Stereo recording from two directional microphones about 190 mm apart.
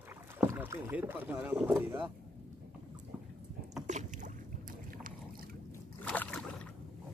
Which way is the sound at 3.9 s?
40° right (ahead or behind).